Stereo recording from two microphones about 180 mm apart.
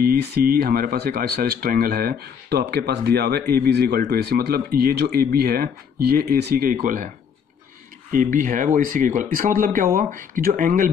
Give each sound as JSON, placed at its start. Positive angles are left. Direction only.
{"t": 0.0, "sound": "speech", "side_deg": -60}
{"t": 8.1, "sound": "speech", "side_deg": -45}